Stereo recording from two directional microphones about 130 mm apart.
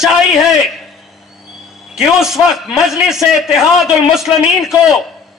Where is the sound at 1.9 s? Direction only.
5° right (ahead or behind).